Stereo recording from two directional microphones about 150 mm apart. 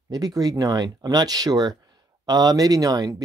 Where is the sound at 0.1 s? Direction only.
25° right (ahead or behind).